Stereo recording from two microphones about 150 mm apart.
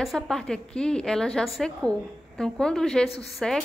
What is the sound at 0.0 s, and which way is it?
A woman's voice, centre (ahead or behind).